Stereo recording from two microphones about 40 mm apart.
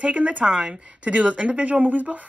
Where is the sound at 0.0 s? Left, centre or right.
Right.